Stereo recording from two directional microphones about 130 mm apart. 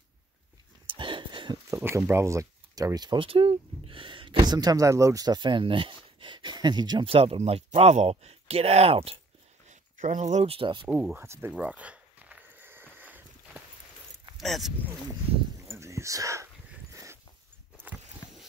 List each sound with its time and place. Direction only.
0.8 s a sound: 40° right (ahead or behind)
1.8 s speech: 20° right (ahead or behind); by 9.2 s 50° right (ahead or behind)
9.7 s speech: 65° right (ahead or behind); by 10.9 s 40° right (ahead or behind)
10.9 s speech: 5° right (ahead or behind)
11.1 s speech: 20° right (ahead or behind)
11.5 s a sound: 10° right (ahead or behind)
14.3 s a sound: centre (ahead or behind)
15.6 s whispering: 20° right (ahead or behind)
16.9 s dog: 25° right (ahead or behind)